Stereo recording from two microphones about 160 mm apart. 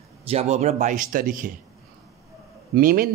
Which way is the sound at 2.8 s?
60° right (ahead or behind).